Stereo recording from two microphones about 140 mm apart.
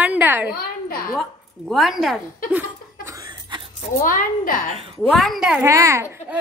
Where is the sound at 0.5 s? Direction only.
90° left.